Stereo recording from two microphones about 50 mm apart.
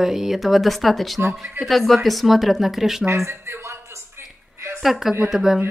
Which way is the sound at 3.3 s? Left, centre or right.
Right.